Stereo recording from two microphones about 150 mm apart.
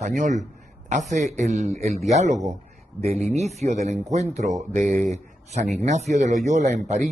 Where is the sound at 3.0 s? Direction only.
45° right (ahead or behind).